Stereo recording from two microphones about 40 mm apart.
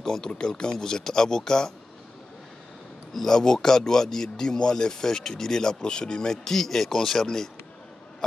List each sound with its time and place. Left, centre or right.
0.0 s a man's voice: centre
3.1 s a man's voice: centre